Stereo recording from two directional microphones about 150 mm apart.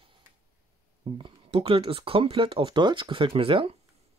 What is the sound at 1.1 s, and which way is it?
Speech, 35° right (ahead or behind).